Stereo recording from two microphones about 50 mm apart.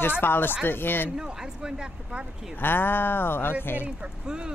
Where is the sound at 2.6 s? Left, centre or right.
Left.